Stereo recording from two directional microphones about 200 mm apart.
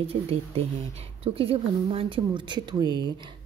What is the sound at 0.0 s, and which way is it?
Speech, 30° right (ahead or behind).